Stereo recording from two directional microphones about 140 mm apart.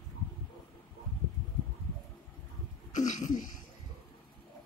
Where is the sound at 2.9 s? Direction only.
60° left (ahead or behind).